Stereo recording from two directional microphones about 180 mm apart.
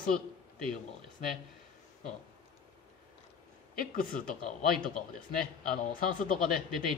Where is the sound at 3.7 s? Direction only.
55° left (ahead or behind).